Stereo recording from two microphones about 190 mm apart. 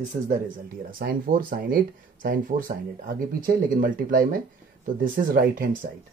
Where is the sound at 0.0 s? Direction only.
40° right (ahead or behind).